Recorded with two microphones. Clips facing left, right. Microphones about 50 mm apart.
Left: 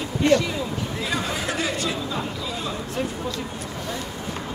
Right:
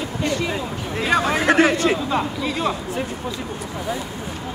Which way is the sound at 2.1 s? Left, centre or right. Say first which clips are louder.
Right 6 dB; right.